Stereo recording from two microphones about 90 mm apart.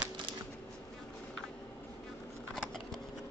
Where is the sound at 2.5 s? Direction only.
5° left (ahead or behind).